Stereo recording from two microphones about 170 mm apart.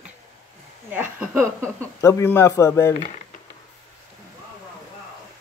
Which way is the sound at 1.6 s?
15° left (ahead or behind).